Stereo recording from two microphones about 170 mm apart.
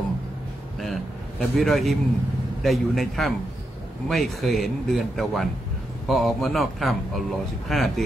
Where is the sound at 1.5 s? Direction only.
Centre (ahead or behind).